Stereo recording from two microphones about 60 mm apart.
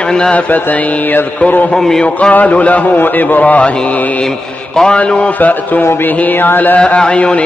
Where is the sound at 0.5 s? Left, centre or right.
Left.